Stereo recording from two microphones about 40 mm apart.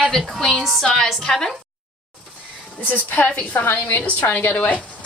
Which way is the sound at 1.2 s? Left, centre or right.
Centre.